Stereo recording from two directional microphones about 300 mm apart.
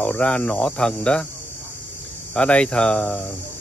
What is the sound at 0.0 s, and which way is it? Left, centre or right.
Speech, centre.